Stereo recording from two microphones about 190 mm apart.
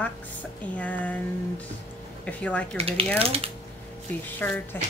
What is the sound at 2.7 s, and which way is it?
Speech, 30° right (ahead or behind).